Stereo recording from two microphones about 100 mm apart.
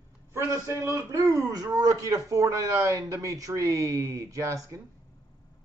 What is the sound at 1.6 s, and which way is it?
A man's voice, 40° right (ahead or behind).